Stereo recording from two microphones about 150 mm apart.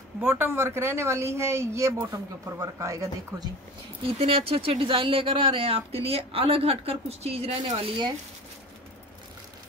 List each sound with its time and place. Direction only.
0.2 s speech: 15° right (ahead or behind)
4.0 s speech: 40° right (ahead or behind)